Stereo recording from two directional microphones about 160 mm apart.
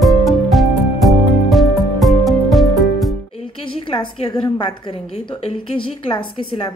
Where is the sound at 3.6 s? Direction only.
30° left (ahead or behind).